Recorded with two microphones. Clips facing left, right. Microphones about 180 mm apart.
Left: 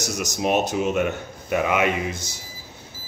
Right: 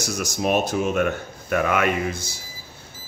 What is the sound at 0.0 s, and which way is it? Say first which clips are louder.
A man's voice: even; 20° left (ahead or behind).